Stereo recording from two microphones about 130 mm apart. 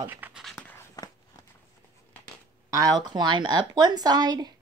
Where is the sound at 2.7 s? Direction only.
30° right (ahead or behind).